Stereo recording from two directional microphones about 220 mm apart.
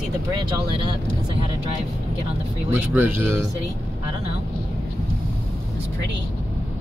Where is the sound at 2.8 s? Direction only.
10° right (ahead or behind).